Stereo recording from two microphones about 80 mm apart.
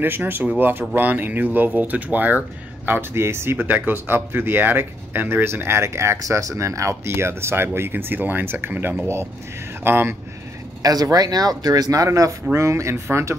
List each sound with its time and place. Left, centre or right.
0.0 s speech: right
10.8 s speech: right